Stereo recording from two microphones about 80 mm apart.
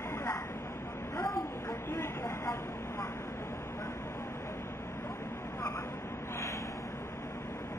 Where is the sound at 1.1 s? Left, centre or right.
Left.